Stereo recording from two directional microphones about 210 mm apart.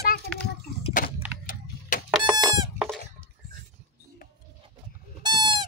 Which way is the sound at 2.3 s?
20° right (ahead or behind).